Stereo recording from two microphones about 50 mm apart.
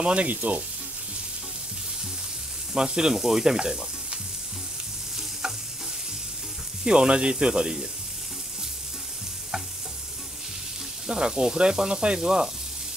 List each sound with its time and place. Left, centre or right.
0.0 s speech: right
2.7 s frying: centre
6.8 s speech: centre
11.1 s speech: centre